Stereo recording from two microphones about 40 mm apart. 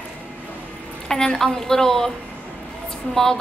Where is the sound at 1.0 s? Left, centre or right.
Centre.